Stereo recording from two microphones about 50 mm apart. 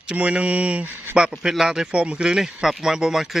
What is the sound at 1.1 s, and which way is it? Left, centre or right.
Speech, centre.